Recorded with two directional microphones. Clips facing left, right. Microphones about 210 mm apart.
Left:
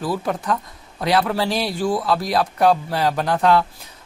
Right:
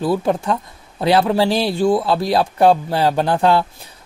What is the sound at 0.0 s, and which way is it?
Speech, 25° right (ahead or behind).